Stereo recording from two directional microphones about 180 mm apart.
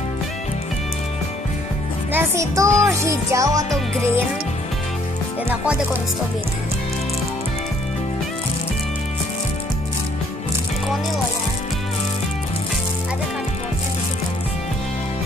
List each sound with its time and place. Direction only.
2.1 s speech: 15° right (ahead or behind)